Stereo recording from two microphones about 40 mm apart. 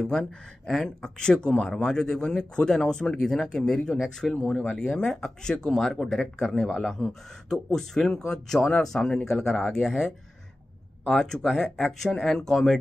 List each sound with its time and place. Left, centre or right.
0.1 s speech: centre
4.6 s speech: left